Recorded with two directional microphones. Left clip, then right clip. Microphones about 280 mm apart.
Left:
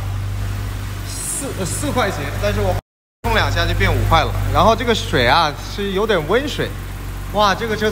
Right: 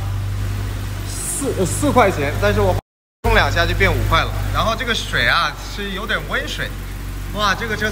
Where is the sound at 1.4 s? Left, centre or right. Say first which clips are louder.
Right 6 dB; right.